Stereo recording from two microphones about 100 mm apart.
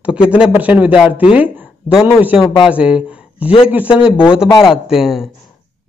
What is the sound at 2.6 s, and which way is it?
Speech, 10° right (ahead or behind).